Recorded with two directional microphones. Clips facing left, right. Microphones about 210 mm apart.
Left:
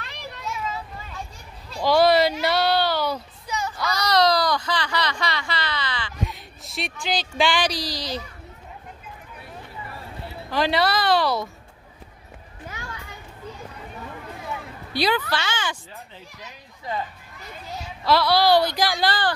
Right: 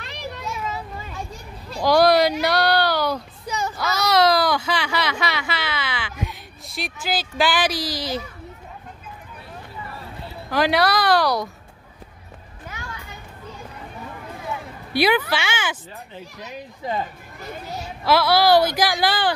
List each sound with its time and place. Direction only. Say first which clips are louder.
1.8 s a sound: right 2 dB; centre (ahead or behind)
3.7 s baby cry: right 2 dB; 5° right (ahead or behind)
7.7 s a woman's voice: right 3 dB; 20° left (ahead or behind)
10.5 s speech: right 2 dB; centre (ahead or behind)
12.6 s a sound: even; 30° left (ahead or behind)
15.0 s speech: right 4 dB; 10° right (ahead or behind)
18.0 s speech: right 2 dB; 5° right (ahead or behind)